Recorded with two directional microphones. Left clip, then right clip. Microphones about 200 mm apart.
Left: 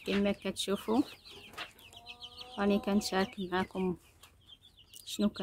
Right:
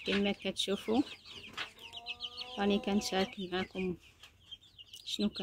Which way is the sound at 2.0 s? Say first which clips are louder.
Right 6 dB; 45° left (ahead or behind).